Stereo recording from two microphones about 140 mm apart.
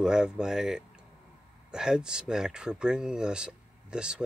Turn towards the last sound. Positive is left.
turn(degrees=-5)  # may be behind; listen again after turning